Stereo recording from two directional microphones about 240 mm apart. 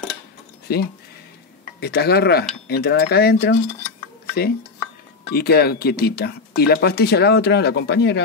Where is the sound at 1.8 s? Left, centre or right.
Left.